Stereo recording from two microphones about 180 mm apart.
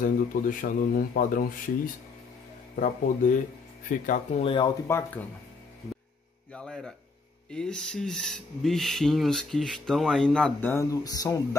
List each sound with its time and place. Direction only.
0.3 s speech: 50° left (ahead or behind)
2.7 s speech: 45° left (ahead or behind)
4.4 s speech: 25° left (ahead or behind)
4.8 s speech: 15° left (ahead or behind)
6.5 s speech: 5° left (ahead or behind); by 11.4 s 20° left (ahead or behind)